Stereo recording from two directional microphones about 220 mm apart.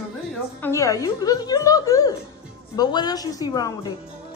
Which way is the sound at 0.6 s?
15° left (ahead or behind).